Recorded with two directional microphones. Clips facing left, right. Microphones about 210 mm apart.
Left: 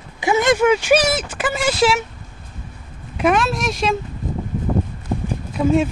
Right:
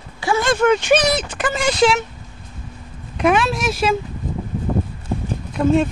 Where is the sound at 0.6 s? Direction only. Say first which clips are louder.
Even; 5° left (ahead or behind).